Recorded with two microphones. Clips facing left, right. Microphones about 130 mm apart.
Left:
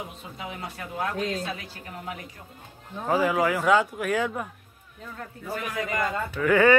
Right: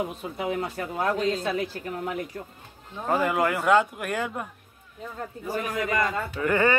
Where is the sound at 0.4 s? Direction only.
50° right (ahead or behind).